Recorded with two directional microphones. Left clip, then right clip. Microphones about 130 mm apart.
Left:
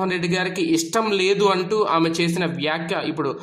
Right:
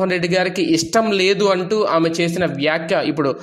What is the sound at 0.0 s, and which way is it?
A man's voice, 30° right (ahead or behind).